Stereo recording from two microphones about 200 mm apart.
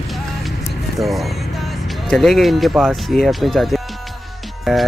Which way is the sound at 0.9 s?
Centre (ahead or behind).